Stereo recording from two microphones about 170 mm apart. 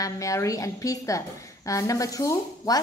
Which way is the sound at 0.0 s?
20° left (ahead or behind).